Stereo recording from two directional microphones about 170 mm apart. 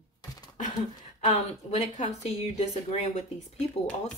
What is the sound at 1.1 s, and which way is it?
Speech, 40° left (ahead or behind).